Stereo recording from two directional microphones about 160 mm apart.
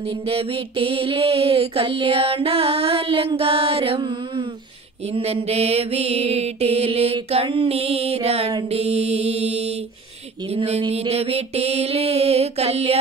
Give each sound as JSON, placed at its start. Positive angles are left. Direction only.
{"t": 0.3, "sound": "music", "side_deg": -35}